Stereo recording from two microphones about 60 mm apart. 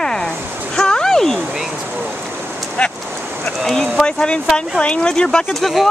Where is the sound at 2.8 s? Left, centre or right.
Left.